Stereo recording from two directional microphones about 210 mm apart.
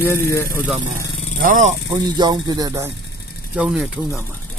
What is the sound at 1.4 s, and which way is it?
Speech, 35° right (ahead or behind).